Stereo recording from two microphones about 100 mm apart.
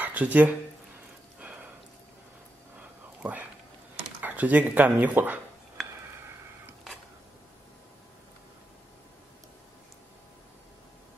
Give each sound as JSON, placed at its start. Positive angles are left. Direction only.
{"t": 0.0, "sound": "speech", "side_deg": -15}
{"t": 3.2, "sound": "speech", "side_deg": -15}